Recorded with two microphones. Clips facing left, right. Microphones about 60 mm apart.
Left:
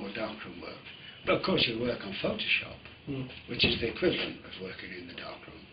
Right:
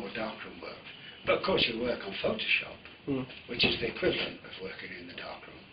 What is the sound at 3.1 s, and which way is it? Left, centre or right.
Speech, right.